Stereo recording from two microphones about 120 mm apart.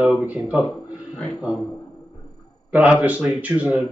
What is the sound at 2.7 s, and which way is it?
Speech, 10° right (ahead or behind).